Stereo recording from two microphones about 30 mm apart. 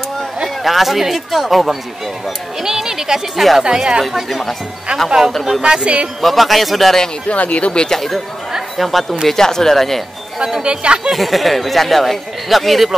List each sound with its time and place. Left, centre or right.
0.7 s speech: centre
2.6 s speech: centre
3.3 s speech: centre
3.7 s speech: right
4.1 s speech: centre
5.6 s speech: right
6.2 s speech: centre
7.2 s speech: left
7.9 s speech: centre
9.3 s speech: centre
10.6 s speech: right
11.1 s speech: centre